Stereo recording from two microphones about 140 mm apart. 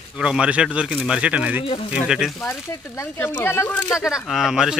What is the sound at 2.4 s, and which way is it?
Speech, 15° left (ahead or behind).